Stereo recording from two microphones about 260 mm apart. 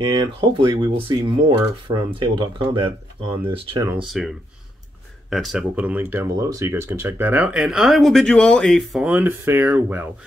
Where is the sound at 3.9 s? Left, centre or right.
Centre.